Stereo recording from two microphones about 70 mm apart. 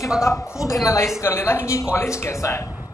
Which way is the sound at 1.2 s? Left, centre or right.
Left.